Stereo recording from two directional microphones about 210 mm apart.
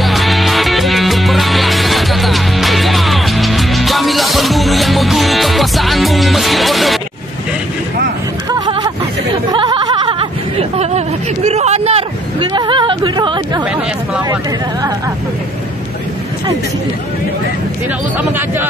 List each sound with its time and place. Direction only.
0.0 s music: centre (ahead or behind)
8.5 s a sound: 20° right (ahead or behind)
10.8 s hubbub: 30° right (ahead or behind)